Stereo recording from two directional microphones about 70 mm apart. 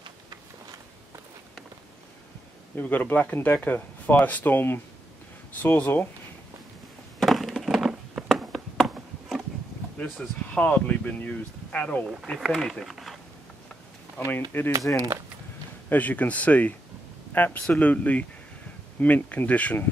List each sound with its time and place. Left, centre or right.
2.7 s speech: left
7.2 s a sound: centre
10.2 s speech: left
12.4 s speech: centre
14.3 s speech: left
15.9 s speech: left